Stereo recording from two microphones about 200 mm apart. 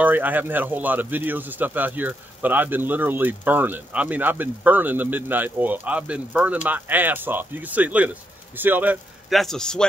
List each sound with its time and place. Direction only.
0.0 s speech: 10° right (ahead or behind)